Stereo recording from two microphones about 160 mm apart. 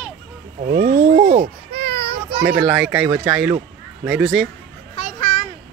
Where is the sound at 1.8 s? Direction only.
80° right.